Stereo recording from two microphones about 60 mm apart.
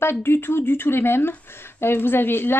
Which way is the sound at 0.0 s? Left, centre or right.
Left.